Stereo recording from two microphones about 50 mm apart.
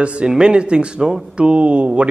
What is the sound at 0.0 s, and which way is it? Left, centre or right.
A man's voice, right.